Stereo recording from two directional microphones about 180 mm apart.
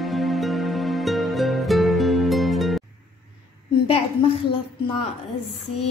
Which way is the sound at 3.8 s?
30° left (ahead or behind).